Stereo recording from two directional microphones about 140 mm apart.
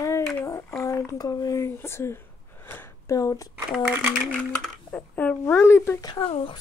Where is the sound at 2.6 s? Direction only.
15° left (ahead or behind).